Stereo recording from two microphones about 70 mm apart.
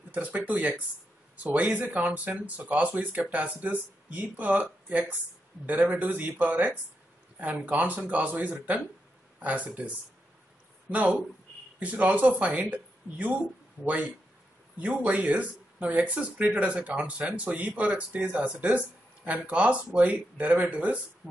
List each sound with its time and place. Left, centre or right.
0.1 s speech: right
10.9 s speech: right
13.8 s speech: right